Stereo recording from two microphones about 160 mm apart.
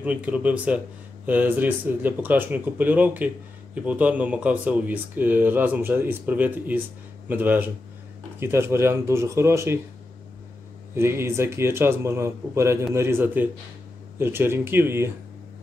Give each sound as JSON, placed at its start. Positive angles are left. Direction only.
{"t": 0.0, "sound": "speech", "side_deg": -10}
{"t": 11.0, "sound": "speech", "side_deg": -15}